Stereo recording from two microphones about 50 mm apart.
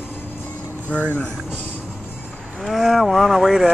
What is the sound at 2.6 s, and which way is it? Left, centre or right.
Speech, centre.